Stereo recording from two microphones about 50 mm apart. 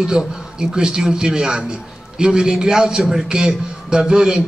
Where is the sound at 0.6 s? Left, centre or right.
Centre.